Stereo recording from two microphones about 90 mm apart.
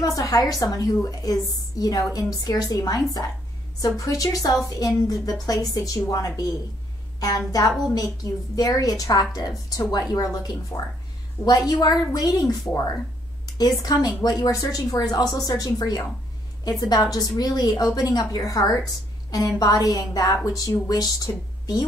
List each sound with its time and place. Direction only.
0.0 s a woman's voice: 40° left (ahead or behind)
13.6 s a woman's voice: 45° left (ahead or behind)